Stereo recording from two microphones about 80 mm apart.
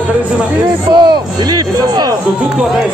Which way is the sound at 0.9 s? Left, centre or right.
Right.